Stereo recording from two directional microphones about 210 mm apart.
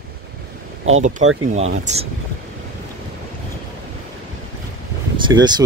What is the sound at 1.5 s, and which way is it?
Speech, 35° right (ahead or behind).